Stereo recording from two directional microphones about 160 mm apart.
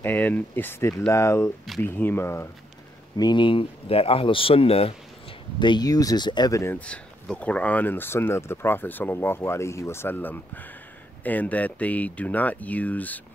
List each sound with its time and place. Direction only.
0.0 s speech: 10° left (ahead or behind)
3.2 s speech: 30° left (ahead or behind)
5.6 s speech: 25° left (ahead or behind); by 13.2 s 10° left (ahead or behind)